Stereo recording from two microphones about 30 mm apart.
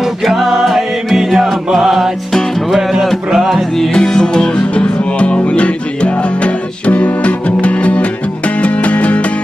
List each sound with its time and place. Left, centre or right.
0.2 s music: centre
3.3 s music: centre
3.9 s music: left
4.6 s music: left
6.9 s music: left